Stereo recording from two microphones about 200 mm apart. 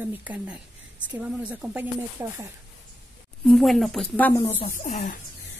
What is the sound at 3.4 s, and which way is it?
Speech, centre (ahead or behind).